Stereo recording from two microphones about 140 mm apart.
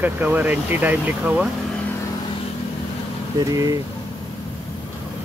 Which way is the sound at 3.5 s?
25° right (ahead or behind).